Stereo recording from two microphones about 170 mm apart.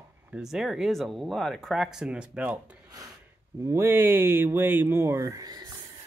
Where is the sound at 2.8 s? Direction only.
20° right (ahead or behind).